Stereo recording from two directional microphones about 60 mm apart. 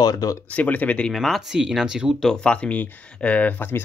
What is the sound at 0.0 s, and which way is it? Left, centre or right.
Speech, left.